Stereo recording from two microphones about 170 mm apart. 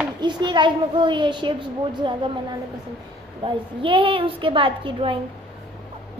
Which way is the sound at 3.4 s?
30° right (ahead or behind).